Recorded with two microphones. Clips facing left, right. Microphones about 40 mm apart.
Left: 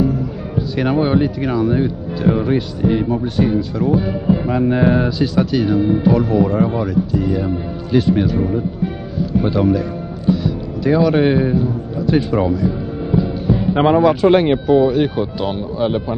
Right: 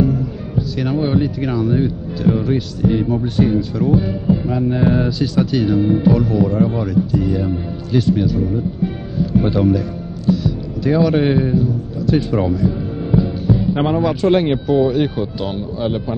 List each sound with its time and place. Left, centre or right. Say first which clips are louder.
1.0 s speech: left 2 dB; centre
4.3 s music: left 2 dB; left
4.7 s speech: left 2 dB; centre
6.8 s speech: even; centre
7.9 s speech: left 2 dB; centre
8.2 s music: left 1 dB; left
8.5 s speech: left 1 dB; centre
10.2 s music: even; centre
13.5 s speech: left 5 dB; centre